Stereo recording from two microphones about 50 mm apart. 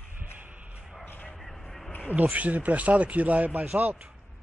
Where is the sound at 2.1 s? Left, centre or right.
Right.